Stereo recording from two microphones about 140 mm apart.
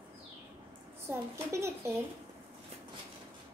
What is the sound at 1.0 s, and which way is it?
Speech, 20° right (ahead or behind).